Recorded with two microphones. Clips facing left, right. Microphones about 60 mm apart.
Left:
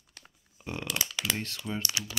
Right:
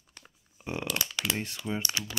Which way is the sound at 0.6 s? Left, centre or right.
Right.